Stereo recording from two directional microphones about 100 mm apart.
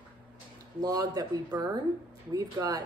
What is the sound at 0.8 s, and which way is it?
A woman's voice, 40° right (ahead or behind).